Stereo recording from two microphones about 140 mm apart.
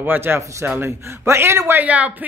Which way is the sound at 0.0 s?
15° right (ahead or behind).